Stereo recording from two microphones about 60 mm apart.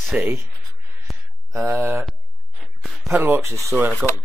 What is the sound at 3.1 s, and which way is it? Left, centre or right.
Speech, right.